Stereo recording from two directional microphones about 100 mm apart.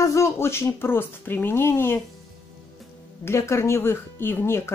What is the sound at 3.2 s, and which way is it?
A woman's voice, 25° left (ahead or behind).